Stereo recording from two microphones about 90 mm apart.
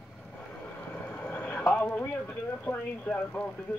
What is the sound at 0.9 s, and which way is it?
Speech, 15° left (ahead or behind).